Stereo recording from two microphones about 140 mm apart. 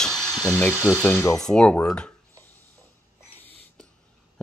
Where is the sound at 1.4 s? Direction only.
5° left (ahead or behind).